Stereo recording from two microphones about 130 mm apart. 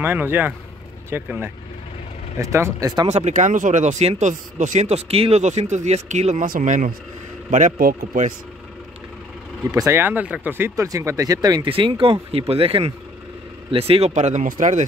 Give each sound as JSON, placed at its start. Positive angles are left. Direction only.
{"t": 0.0, "sound": "speech", "side_deg": -15}
{"t": 3.1, "sound": "a man's voice", "side_deg": -60}
{"t": 9.7, "sound": "speech", "side_deg": -25}